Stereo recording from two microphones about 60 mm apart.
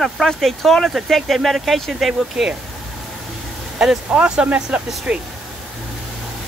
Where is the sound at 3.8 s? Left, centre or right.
Centre.